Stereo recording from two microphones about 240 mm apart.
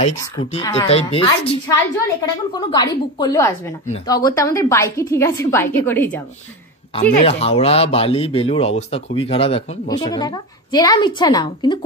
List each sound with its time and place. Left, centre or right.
0.1 s a woman's voice: centre
0.8 s a woman's voice: left; by 6.2 s centre
7.0 s speech: left